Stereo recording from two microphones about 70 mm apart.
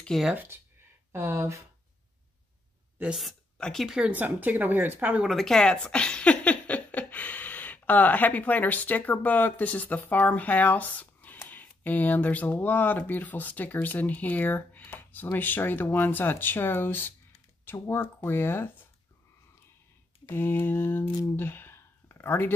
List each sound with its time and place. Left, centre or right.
0.1 s speech: centre
1.1 s speech: right
3.1 s speech: centre
3.5 s speech: centre
3.8 s speech: centre
4.1 s speech: right
5.3 s speech: centre; by 18.9 s left
20.2 s speech: left
21.4 s a sound: left